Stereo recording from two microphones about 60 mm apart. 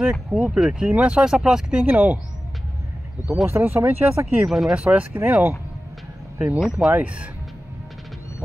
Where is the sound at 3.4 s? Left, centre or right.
Right.